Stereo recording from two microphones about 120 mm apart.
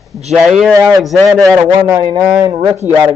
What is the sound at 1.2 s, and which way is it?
Speech, 30° right (ahead or behind).